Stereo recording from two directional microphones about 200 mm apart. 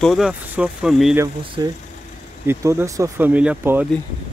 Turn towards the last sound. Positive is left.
turn(degrees=-10)  # may be behind; listen again after turning